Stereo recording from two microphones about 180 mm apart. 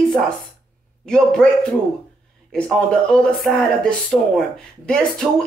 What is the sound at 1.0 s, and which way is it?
Speech, 5° left (ahead or behind).